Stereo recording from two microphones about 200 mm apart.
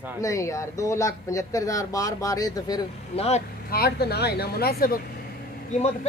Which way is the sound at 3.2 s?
30° left (ahead or behind).